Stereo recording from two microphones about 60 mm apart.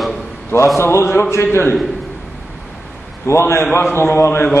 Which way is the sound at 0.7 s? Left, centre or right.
Left.